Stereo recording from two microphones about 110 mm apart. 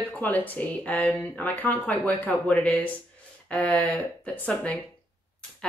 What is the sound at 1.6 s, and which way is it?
Speech, 15° left (ahead or behind).